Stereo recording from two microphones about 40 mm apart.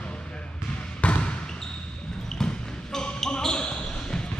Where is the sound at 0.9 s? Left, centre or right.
Left.